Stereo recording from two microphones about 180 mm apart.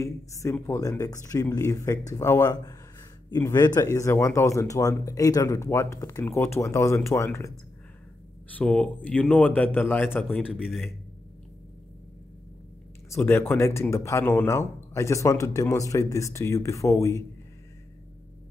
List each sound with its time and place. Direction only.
0.0 s speech: 15° left (ahead or behind)
8.5 s speech: 5° left (ahead or behind)
10.4 s a man's voice: 5° right (ahead or behind)
13.1 s speech: 15° left (ahead or behind)